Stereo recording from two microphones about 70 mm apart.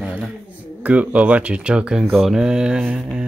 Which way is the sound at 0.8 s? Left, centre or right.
Centre.